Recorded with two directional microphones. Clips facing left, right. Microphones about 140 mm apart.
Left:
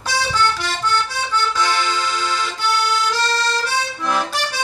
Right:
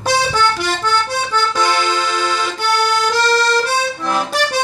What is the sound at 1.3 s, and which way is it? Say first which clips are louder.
Accordion: right 2 dB; 55° right (ahead or behind).